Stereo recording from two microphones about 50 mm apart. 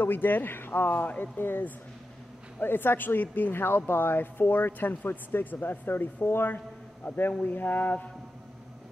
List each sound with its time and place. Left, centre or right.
0.0 s speech: left